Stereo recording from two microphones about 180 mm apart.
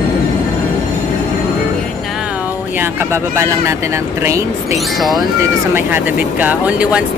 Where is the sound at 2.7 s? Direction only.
15° right (ahead or behind).